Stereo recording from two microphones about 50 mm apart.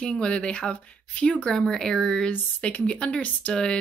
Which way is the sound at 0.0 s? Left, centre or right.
Centre.